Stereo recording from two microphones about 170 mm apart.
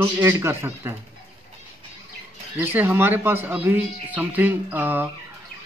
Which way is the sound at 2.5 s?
10° right (ahead or behind).